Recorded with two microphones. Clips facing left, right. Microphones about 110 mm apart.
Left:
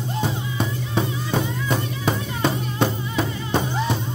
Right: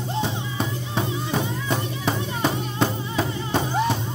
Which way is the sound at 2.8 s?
25° left (ahead or behind).